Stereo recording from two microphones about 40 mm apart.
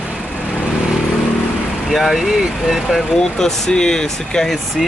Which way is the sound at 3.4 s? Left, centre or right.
Centre.